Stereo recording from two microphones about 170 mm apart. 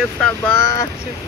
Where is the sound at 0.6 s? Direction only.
20° left (ahead or behind).